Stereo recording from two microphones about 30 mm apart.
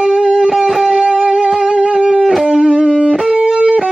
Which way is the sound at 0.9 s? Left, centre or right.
Right.